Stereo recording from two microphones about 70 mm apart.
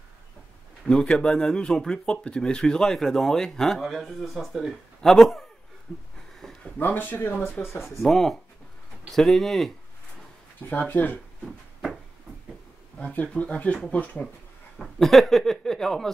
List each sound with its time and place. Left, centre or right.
0.8 s speech: centre
6.6 s speech: left
8.0 s speech: centre
10.7 s speech: left
11.4 s a sound: centre
13.0 s speech: centre
14.8 s speech: centre